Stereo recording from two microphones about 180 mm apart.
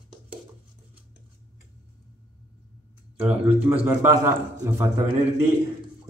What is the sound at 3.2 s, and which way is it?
A man's voice, 10° right (ahead or behind).